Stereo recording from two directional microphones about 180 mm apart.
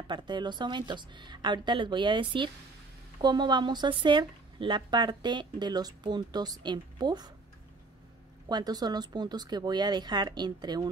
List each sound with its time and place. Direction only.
0.1 s speech: 25° right (ahead or behind)
8.5 s speech: 20° right (ahead or behind)